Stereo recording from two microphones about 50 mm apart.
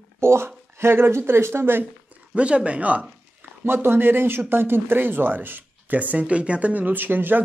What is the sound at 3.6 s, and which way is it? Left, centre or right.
Speech, right.